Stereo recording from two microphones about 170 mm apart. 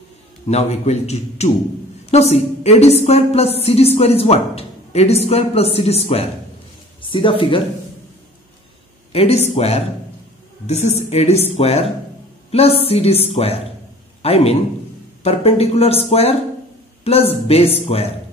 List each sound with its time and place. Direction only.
0.5 s a woman's voice: 40° left (ahead or behind)
9.1 s a woman's voice: 35° left (ahead or behind)
12.4 s a sound: 35° left (ahead or behind)
12.8 s a woman's voice: 35° left (ahead or behind)